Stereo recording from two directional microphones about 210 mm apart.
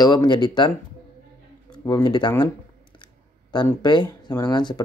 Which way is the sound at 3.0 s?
20° left (ahead or behind).